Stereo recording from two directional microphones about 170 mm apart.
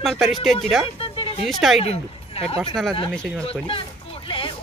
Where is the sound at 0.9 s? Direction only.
35° left (ahead or behind).